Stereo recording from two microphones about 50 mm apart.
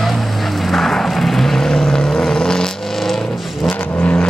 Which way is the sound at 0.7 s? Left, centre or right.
Centre.